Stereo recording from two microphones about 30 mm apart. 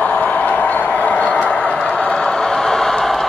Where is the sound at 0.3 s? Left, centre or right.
Left.